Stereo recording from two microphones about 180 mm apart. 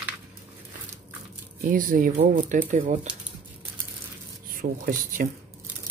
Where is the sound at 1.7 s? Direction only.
50° right (ahead or behind).